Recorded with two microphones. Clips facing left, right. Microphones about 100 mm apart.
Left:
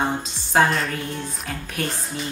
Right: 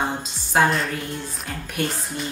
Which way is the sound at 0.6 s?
Centre (ahead or behind).